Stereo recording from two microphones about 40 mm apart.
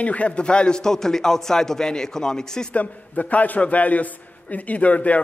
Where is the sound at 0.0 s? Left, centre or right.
Left.